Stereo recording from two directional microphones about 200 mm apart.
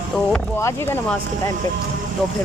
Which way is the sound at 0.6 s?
10° left (ahead or behind).